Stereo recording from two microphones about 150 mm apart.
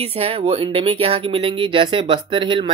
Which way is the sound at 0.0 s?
40° right (ahead or behind).